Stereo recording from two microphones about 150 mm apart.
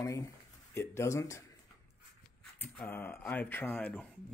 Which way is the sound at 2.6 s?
10° left (ahead or behind).